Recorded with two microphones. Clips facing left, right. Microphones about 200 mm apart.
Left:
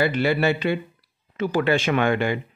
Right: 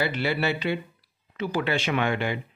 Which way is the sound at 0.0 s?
50° left (ahead or behind).